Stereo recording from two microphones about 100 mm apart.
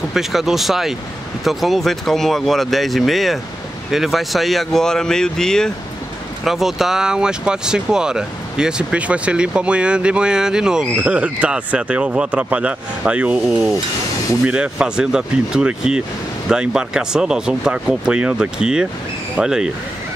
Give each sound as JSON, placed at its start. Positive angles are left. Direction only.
{"t": 0.1, "sound": "speech", "side_deg": -5}